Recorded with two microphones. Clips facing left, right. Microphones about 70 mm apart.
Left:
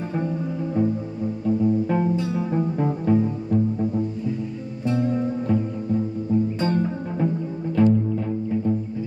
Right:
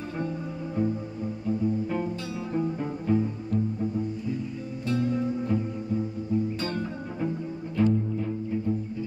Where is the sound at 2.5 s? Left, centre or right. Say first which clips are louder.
Left 3 dB; centre.